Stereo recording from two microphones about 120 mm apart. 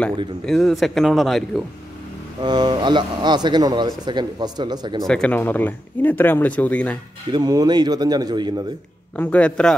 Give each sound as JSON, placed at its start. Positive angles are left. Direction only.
{"t": 0.5, "sound": "a man's voice", "side_deg": 0}
{"t": 2.4, "sound": "speech", "side_deg": -35}
{"t": 5.0, "sound": "speech", "side_deg": 5}
{"t": 7.2, "sound": "speech", "side_deg": -35}
{"t": 9.1, "sound": "speech", "side_deg": 15}